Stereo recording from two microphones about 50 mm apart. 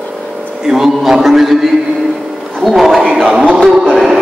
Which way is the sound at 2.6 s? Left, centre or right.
Centre.